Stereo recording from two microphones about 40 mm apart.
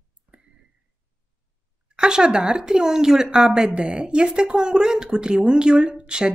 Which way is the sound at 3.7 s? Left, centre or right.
Right.